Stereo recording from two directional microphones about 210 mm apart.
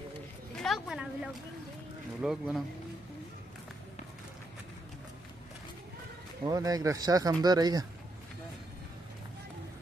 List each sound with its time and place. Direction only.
0.6 s a sound: centre (ahead or behind)
2.2 s speech: 5° right (ahead or behind)
6.4 s speech: 15° right (ahead or behind)